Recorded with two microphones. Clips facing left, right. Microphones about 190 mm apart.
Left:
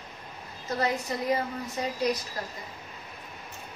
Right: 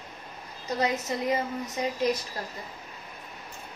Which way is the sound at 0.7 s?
20° right (ahead or behind).